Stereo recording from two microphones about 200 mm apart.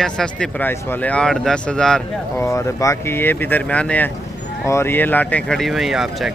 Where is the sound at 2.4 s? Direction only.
15° left (ahead or behind).